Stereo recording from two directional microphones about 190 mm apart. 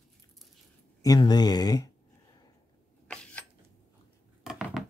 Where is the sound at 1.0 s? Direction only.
20° left (ahead or behind).